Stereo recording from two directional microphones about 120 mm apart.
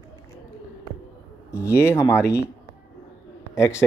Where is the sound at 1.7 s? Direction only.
25° left (ahead or behind).